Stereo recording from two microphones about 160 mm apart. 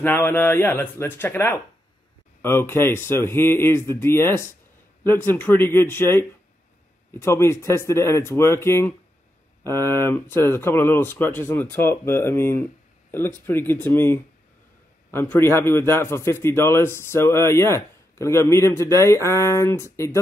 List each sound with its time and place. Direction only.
0.0 s a man's voice: 10° left (ahead or behind)